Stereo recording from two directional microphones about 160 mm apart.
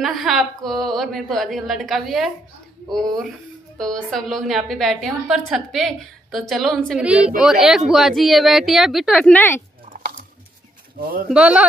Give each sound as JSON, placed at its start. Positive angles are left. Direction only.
{"t": 0.0, "sound": "a woman's voice", "side_deg": 0}
{"t": 3.7, "sound": "a woman's voice", "side_deg": 5}
{"t": 11.0, "sound": "speech", "side_deg": -65}
{"t": 11.2, "sound": "speech", "side_deg": -5}